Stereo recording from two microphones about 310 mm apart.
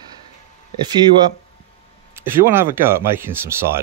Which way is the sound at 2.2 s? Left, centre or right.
Centre.